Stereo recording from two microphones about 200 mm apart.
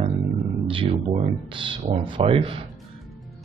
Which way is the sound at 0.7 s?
25° right (ahead or behind).